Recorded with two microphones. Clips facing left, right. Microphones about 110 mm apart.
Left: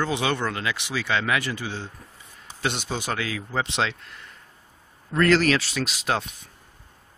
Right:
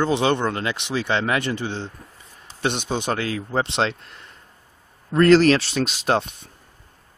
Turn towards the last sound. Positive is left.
turn(degrees=-30)  # may be behind; listen again after turning